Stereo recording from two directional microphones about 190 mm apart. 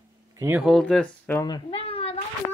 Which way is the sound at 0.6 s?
Centre (ahead or behind).